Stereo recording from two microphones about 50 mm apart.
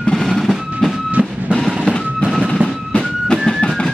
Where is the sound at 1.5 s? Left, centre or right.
Centre.